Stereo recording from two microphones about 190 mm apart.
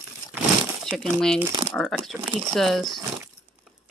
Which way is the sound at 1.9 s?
10° right (ahead or behind).